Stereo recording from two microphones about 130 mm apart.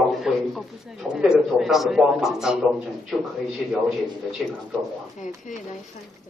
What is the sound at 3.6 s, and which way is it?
Speech, centre (ahead or behind).